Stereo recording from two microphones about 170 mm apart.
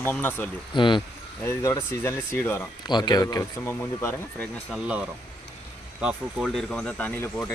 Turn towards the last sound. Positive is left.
turn(degrees=10)  # may be behind; listen again after turning